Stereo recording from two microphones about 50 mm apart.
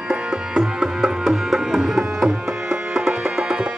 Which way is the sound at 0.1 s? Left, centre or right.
Centre.